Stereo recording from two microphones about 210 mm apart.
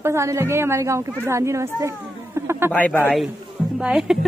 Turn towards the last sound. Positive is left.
turn(degrees=-5)  # may be behind; listen again after turning